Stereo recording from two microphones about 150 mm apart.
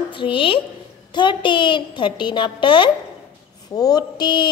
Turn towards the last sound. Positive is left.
turn(degrees=30)  # may be behind; listen again after turning